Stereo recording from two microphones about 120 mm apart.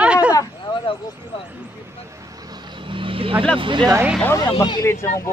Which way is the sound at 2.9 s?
45° right (ahead or behind).